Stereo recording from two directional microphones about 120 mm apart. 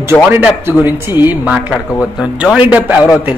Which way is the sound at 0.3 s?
20° right (ahead or behind).